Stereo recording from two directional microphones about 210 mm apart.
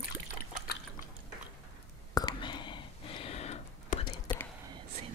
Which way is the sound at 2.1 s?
20° left (ahead or behind).